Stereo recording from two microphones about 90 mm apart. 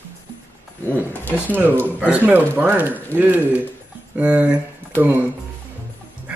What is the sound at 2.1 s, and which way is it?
Speech, 20° right (ahead or behind).